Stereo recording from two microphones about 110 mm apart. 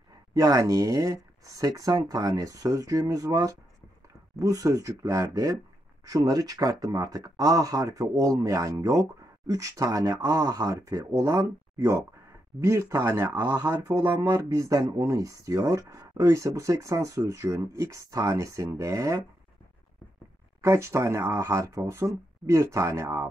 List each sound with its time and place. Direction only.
0.3 s speech: 35° right (ahead or behind)
20.6 s speech: 25° right (ahead or behind)